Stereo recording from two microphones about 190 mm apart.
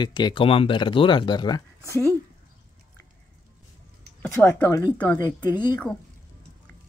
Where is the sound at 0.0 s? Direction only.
25° left (ahead or behind).